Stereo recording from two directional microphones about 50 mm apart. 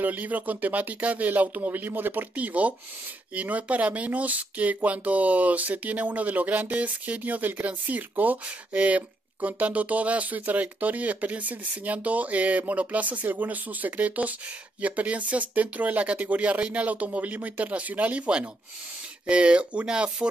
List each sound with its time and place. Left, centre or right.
0.0 s speech: right; by 20.2 s centre